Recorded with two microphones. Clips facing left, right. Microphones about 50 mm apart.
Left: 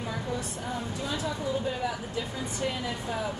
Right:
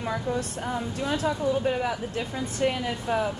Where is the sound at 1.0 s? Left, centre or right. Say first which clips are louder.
Right 7 dB; right.